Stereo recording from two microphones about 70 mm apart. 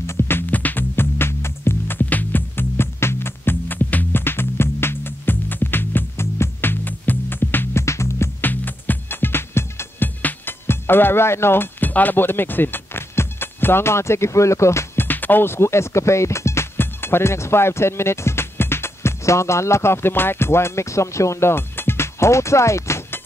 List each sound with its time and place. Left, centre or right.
0.0 s music: left
7.8 s music: left
8.4 s music: left
15.0 s speech: left